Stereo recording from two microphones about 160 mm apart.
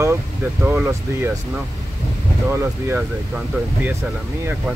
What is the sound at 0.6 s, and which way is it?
Speech, 5° right (ahead or behind).